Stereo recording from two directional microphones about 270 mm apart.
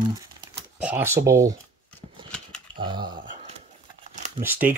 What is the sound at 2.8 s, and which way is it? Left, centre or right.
Speech, centre.